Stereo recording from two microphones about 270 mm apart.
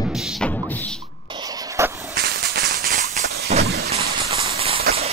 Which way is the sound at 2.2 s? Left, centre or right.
Right.